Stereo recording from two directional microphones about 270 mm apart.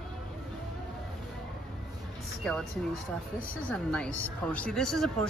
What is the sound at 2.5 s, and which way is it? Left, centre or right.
Speech, centre.